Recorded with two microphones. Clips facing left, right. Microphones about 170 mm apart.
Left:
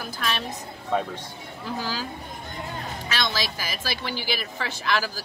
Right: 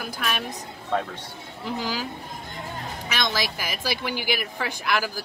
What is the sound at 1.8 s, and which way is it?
Speech, 15° right (ahead or behind).